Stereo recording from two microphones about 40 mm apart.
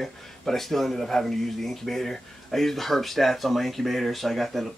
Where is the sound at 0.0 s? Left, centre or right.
Centre.